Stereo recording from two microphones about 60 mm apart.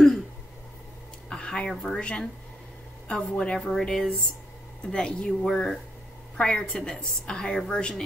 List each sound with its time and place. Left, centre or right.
1.3 s a sound: centre
1.7 s speech: centre
2.0 s a woman's voice: centre